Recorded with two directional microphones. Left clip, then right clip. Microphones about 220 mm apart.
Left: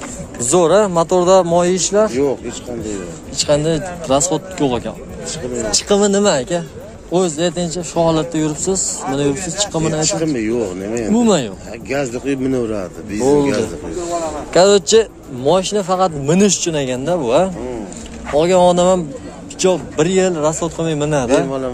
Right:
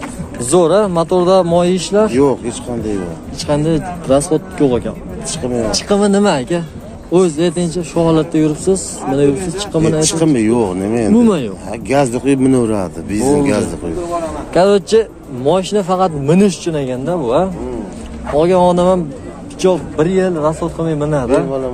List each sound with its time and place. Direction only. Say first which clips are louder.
0.4 s speech: right 1 dB; 10° left (ahead or behind)
2.1 s speech: right 4 dB; 30° right (ahead or behind)
3.3 s speech: left 1 dB; 20° left (ahead or behind)
10.0 s speech: right 5 dB; 35° right (ahead or behind)
11.1 s speech: left 1 dB; 15° left (ahead or behind)
11.9 s speech: right 6 dB; 35° right (ahead or behind)
14.5 s speech: even; 20° left (ahead or behind)
16.4 s speech: even; 20° left (ahead or behind)
21.3 s a man's voice: right 1 dB; 50° left (ahead or behind)